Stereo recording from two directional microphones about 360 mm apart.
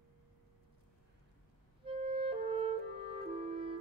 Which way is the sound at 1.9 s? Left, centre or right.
Centre.